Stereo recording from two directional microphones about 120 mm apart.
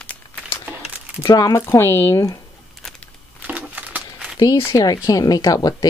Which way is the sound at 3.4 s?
15° right (ahead or behind).